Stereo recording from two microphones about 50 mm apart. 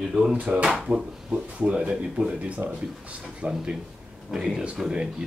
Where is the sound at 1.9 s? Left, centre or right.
Centre.